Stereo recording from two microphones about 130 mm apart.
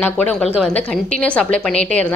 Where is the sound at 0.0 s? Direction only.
10° left (ahead or behind).